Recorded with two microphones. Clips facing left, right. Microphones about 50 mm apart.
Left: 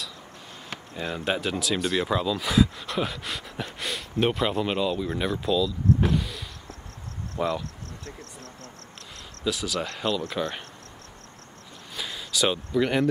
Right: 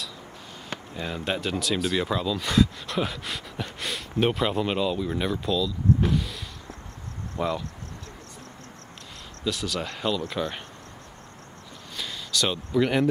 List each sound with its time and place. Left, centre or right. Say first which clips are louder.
0.7 s speech: even; centre
9.4 s speech: left 1 dB; centre
11.9 s a sound: right 1 dB; centre